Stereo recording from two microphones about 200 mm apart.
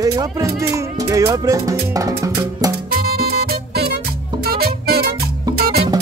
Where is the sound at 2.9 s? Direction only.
50° right (ahead or behind).